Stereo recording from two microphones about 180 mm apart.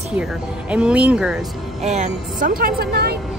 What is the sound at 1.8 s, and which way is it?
A woman's voice, 40° right (ahead or behind).